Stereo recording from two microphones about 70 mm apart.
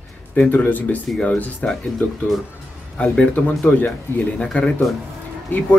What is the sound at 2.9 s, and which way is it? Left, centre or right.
Speech, centre.